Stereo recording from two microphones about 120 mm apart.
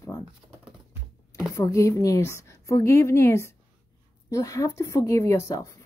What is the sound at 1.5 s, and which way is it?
Speech, 25° left (ahead or behind).